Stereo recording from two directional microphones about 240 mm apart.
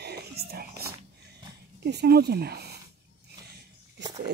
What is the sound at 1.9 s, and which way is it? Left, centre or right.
Speech, right.